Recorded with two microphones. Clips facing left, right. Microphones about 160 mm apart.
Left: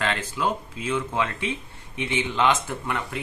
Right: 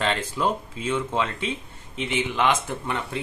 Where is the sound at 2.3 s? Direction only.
20° right (ahead or behind).